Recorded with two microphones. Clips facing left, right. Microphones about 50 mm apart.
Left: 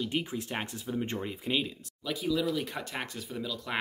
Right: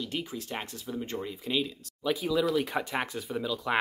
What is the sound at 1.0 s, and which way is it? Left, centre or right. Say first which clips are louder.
Speech: right 1 dB; left.